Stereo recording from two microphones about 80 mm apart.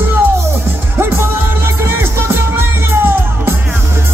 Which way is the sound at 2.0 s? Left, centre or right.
Right.